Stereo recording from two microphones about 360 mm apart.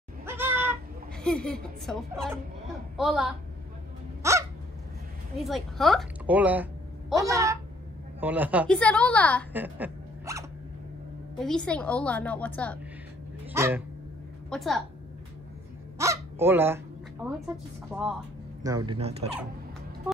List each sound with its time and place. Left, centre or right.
0.2 s cat: centre
1.2 s a woman's voice: centre
4.2 s hiccup: centre
5.4 s a woman's voice: centre
16.0 s hiccup: centre
18.6 s speech: centre